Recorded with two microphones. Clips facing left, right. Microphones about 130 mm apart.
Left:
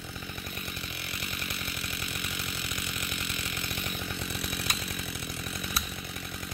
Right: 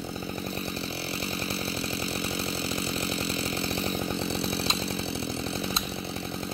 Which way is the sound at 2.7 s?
30° right (ahead or behind).